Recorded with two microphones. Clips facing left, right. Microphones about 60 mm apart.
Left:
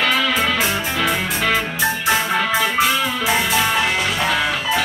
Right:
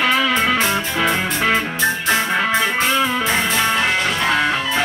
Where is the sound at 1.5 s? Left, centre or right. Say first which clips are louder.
Right 1 dB; centre.